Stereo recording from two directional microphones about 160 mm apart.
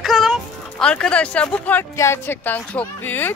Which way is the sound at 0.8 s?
5° left (ahead or behind).